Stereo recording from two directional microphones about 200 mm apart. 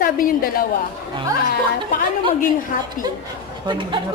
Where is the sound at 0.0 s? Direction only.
45° left (ahead or behind).